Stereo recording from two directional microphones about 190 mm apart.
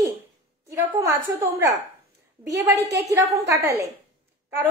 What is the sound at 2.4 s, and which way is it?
A woman's voice, 15° right (ahead or behind).